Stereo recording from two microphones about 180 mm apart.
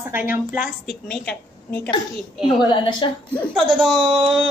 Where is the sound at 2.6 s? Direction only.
25° left (ahead or behind).